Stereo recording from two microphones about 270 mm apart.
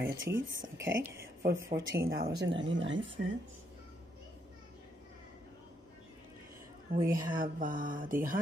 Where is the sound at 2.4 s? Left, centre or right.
Right.